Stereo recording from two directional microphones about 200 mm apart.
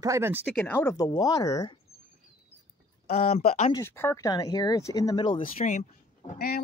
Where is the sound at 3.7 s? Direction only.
10° left (ahead or behind).